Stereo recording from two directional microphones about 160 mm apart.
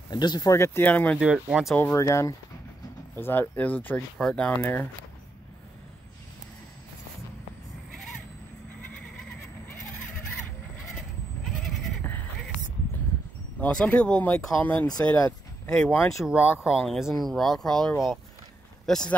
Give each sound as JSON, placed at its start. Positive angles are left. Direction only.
{"t": 0.1, "sound": "speech", "side_deg": 25}
{"t": 1.2, "sound": "speech", "side_deg": -5}
{"t": 1.8, "sound": "speech", "side_deg": 15}
{"t": 11.4, "sound": "goat", "side_deg": 5}
{"t": 13.6, "sound": "speech", "side_deg": 5}